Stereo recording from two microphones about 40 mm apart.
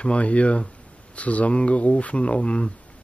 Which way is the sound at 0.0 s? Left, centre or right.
Left.